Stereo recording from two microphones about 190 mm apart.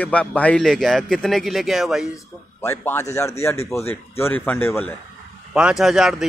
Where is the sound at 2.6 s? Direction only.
15° left (ahead or behind).